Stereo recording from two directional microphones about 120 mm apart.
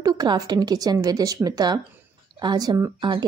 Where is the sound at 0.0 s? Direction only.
35° right (ahead or behind).